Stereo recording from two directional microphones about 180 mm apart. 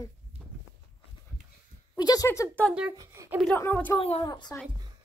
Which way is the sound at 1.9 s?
20° left (ahead or behind).